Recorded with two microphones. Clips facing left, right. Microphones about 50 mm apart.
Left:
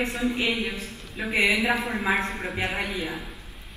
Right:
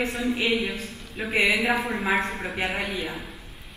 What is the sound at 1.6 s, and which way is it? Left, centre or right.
Speech, centre.